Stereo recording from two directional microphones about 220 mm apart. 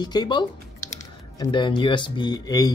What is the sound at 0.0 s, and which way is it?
Speech, 20° left (ahead or behind).